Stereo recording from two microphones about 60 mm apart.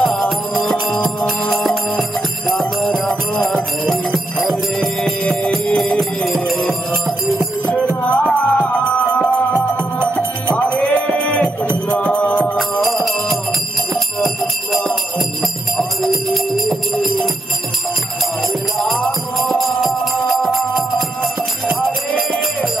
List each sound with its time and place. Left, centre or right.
0.0 s music: centre
2.8 s jingle bell: centre
5.2 s music: centre
5.8 s music: centre
8.0 s music: centre
12.8 s music: centre
18.8 s music: centre